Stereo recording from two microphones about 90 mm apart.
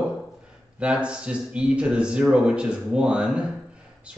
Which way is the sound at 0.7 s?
10° right (ahead or behind).